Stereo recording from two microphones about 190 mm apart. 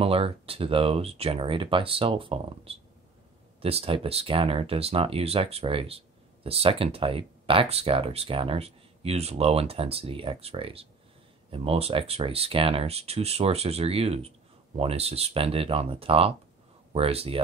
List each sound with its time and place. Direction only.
0.0 s speech: 30° right (ahead or behind)